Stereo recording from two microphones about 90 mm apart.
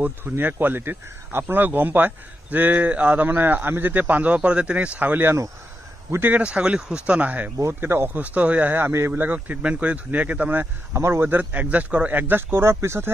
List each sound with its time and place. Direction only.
0.0 s speech: 20° right (ahead or behind)
7.5 s speech: 30° right (ahead or behind)